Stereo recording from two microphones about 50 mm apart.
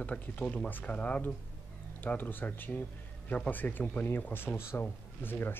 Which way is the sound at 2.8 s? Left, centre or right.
Left.